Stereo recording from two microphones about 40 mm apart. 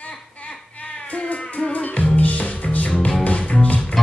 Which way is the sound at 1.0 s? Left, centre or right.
Left.